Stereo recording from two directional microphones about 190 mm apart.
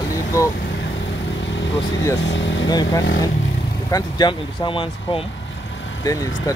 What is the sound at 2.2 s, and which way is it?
Speech, 70° left (ahead or behind).